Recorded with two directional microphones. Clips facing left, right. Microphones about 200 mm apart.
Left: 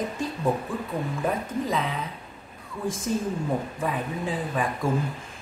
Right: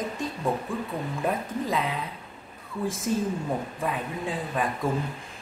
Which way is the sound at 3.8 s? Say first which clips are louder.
Left 1 dB; centre (ahead or behind).